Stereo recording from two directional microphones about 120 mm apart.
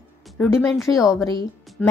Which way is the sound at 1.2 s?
30° left (ahead or behind).